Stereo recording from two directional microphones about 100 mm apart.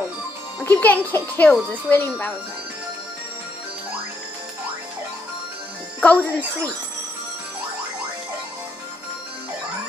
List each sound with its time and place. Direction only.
0.7 s a child's voice: 15° left (ahead or behind)
5.9 s a child's voice: 15° left (ahead or behind)